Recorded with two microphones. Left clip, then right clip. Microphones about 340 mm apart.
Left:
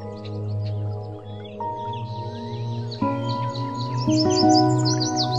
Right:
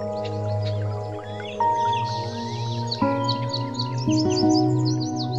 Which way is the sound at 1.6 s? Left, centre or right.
Right.